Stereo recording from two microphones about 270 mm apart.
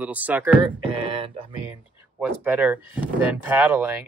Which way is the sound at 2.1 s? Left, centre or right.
Centre.